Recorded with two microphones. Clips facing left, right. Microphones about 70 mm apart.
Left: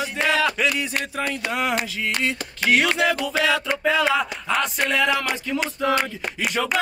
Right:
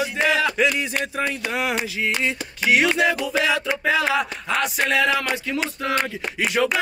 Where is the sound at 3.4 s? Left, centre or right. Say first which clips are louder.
Left 2 dB; centre.